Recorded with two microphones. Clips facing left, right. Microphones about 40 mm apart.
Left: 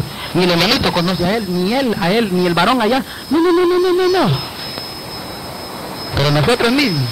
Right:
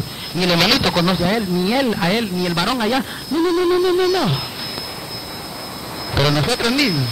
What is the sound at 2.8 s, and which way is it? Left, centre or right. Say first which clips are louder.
Speech: left 4 dB; centre.